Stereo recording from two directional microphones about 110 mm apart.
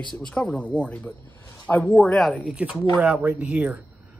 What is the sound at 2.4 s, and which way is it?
Speech, 10° right (ahead or behind).